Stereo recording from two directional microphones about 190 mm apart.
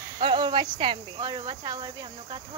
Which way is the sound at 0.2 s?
25° right (ahead or behind).